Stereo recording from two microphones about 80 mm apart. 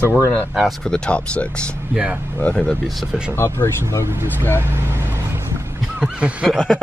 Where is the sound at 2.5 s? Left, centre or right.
Centre.